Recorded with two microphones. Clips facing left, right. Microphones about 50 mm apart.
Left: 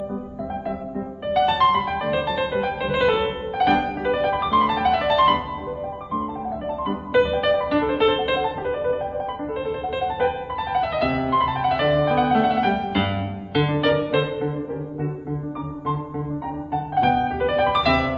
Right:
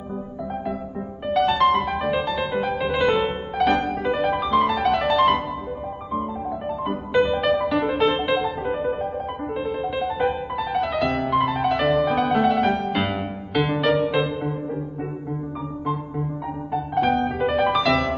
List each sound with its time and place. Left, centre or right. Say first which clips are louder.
0.7 s music: left 1 dB; centre
15.8 s music: even; centre